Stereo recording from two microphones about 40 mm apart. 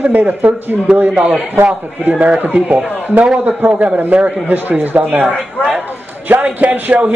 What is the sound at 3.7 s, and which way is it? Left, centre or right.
Speech, right.